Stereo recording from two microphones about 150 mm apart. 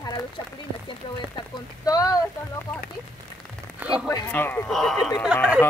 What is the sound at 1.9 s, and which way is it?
Speech, 25° left (ahead or behind).